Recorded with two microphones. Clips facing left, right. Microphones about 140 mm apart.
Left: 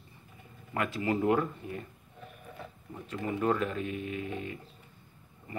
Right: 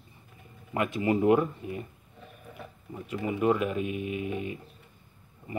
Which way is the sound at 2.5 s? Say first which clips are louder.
Right 4 dB; 10° right (ahead or behind).